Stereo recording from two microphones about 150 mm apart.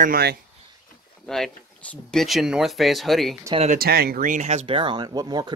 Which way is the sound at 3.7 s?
85° right.